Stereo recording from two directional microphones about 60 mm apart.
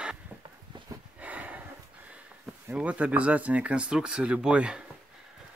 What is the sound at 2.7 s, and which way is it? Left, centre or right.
Speech, right.